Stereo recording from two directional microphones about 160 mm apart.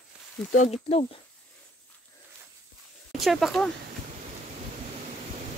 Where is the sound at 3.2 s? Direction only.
Centre (ahead or behind).